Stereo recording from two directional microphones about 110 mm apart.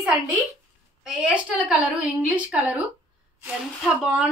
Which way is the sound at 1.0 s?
5° right (ahead or behind).